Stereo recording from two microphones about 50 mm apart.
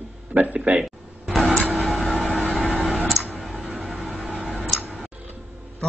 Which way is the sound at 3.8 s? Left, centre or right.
Right.